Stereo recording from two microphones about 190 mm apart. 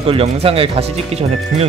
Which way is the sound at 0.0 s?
30° right (ahead or behind).